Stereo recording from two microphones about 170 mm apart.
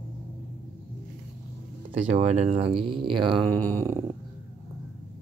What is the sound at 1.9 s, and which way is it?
Speech, 35° right (ahead or behind).